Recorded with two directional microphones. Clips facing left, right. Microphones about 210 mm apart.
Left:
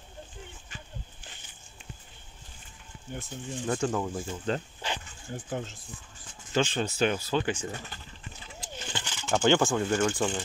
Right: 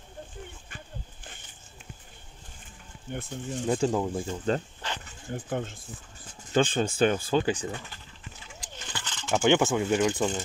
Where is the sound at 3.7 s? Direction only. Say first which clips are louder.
Right 3 dB; 25° right (ahead or behind).